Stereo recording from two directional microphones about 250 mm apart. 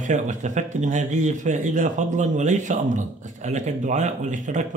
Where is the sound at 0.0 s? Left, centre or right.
Right.